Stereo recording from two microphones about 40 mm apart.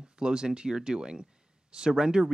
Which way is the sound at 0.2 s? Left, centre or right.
Centre.